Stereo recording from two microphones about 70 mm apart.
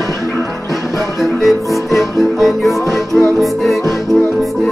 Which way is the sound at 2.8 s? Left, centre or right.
Left.